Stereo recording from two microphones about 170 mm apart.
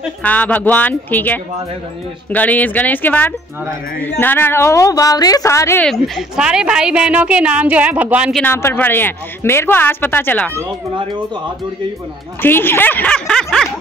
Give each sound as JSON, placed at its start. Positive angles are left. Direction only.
{"t": 0.2, "sound": "speech", "side_deg": 10}
{"t": 5.9, "sound": "a woman's voice", "side_deg": 0}
{"t": 8.4, "sound": "speech", "side_deg": 10}
{"t": 12.4, "sound": "speech", "side_deg": 10}